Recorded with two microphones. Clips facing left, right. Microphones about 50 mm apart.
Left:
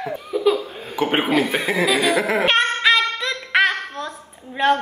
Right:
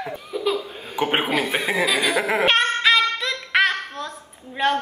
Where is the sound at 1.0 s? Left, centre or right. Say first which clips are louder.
Left 3 dB; centre.